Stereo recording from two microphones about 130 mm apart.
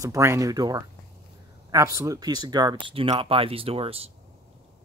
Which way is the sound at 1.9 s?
30° right (ahead or behind).